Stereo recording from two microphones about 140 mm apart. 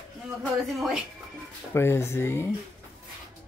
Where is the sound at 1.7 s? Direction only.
15° left (ahead or behind).